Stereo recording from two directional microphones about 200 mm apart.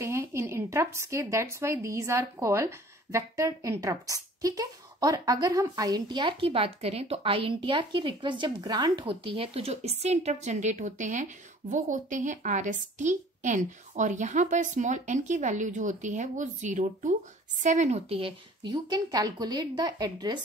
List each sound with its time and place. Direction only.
0.0 s a woman's voice: 15° right (ahead or behind)